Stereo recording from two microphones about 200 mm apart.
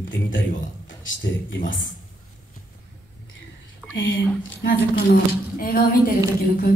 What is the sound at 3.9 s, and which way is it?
Speech, 70° left (ahead or behind).